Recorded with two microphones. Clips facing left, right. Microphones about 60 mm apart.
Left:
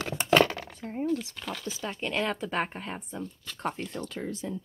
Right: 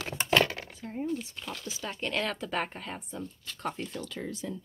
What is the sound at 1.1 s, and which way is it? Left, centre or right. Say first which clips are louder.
Speech: left 4 dB; left.